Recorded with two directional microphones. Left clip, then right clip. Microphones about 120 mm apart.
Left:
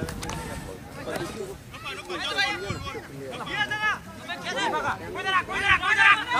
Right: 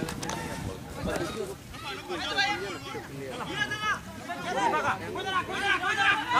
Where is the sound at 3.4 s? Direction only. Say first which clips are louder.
Left 4 dB; 30° left (ahead or behind).